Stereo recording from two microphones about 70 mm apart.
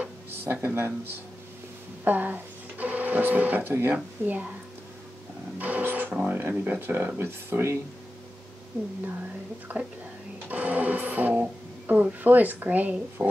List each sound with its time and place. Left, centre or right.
0.3 s speech: right
5.6 s music: right
6.2 s speech: right
9.7 s speech: right